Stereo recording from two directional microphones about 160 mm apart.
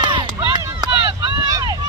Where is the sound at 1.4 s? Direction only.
25° right (ahead or behind).